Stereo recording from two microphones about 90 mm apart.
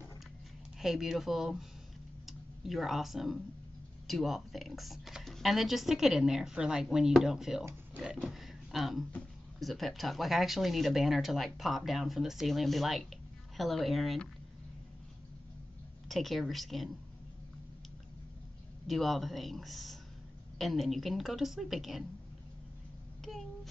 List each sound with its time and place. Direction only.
0.7 s speech: 5° right (ahead or behind)
16.1 s speech: centre (ahead or behind)
18.9 s speech: centre (ahead or behind)
23.2 s a sound: centre (ahead or behind)